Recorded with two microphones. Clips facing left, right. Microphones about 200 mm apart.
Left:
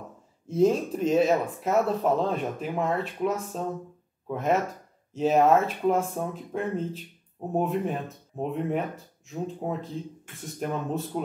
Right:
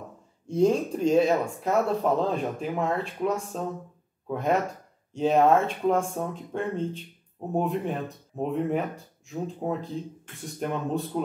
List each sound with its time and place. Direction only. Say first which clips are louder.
0.5 s speech: even; centre (ahead or behind)